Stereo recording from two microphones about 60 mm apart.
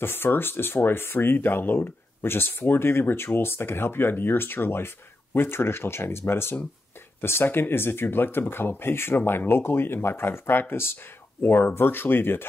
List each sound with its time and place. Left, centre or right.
0.0 s speech: left